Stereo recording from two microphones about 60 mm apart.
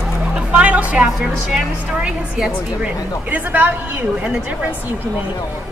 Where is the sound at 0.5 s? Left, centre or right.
Right.